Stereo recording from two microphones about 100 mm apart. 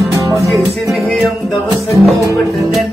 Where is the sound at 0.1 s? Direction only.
35° right (ahead or behind).